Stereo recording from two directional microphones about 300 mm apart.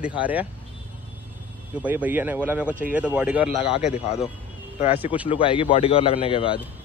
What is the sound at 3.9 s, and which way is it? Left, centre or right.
Speech, left.